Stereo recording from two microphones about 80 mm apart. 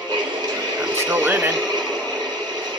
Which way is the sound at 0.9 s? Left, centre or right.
Right.